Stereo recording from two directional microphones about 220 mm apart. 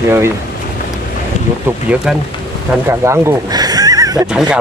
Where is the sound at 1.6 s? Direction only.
5° right (ahead or behind).